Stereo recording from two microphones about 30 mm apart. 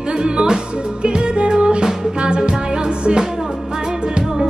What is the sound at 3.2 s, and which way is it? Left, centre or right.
Music, centre.